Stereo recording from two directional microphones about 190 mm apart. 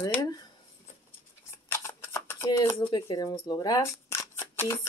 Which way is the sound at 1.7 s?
15° left (ahead or behind).